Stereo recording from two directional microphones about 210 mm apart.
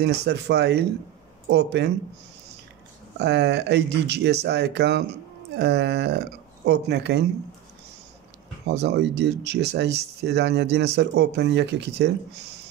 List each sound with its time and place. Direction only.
0.0 s speech: 50° right (ahead or behind)
3.2 s speech: 55° right (ahead or behind)
8.6 s speech: 55° right (ahead or behind)